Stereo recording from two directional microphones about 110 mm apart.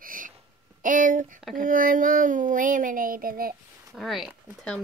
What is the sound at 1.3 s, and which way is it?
Speech, centre (ahead or behind).